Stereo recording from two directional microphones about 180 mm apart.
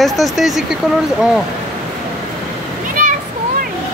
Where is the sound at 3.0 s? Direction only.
45° right (ahead or behind).